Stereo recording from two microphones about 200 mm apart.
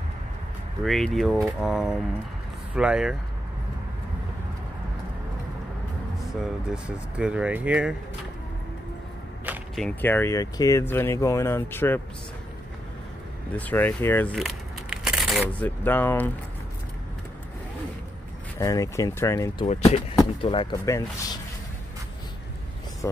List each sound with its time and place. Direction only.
0.8 s speech: centre (ahead or behind)
6.4 s speech: 5° right (ahead or behind)
9.5 s speech: 5° left (ahead or behind)
13.6 s speech: 10° left (ahead or behind)
15.8 s speech: 10° left (ahead or behind)
18.6 s speech: 15° left (ahead or behind)
19.6 s speech: 30° left (ahead or behind)
20.2 s speech: 20° left (ahead or behind)